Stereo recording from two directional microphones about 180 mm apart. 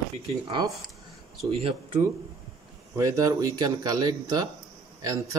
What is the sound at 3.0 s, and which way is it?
Speech, 20° right (ahead or behind).